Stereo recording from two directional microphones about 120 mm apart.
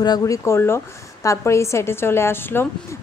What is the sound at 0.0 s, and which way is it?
A woman's voice, 30° left (ahead or behind).